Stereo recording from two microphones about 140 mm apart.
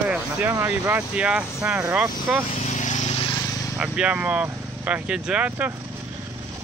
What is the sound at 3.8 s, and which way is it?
Speech, 10° right (ahead or behind).